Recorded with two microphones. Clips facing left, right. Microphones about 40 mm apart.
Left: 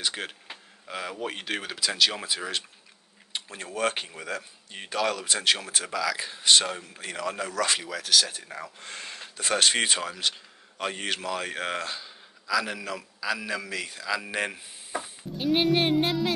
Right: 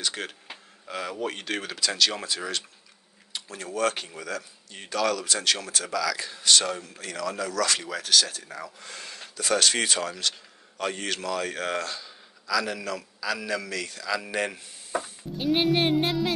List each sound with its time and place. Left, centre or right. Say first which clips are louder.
0.0 s a man's voice: even; centre
3.3 s speech: right 2 dB; left
7.8 s speech: right 1 dB; centre
8.3 s speech: even; left
10.0 s a man's voice: even; centre